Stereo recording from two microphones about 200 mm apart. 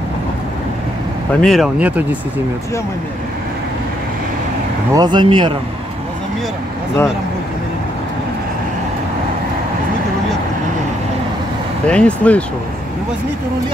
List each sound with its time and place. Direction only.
1.3 s speech: centre (ahead or behind)
4.9 s speech: 20° right (ahead or behind)
11.9 s speech: 5° left (ahead or behind)